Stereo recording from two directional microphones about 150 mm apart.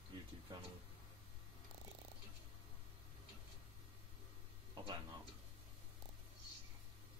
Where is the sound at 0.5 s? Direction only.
25° right (ahead or behind).